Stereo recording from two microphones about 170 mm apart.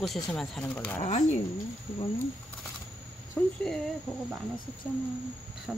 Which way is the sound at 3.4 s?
15° left (ahead or behind).